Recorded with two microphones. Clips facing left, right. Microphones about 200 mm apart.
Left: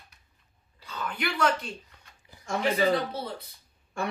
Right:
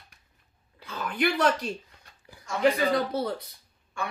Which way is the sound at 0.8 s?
45° right (ahead or behind).